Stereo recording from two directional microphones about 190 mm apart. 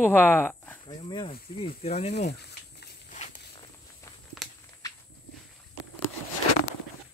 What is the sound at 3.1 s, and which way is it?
Walk, 40° left (ahead or behind).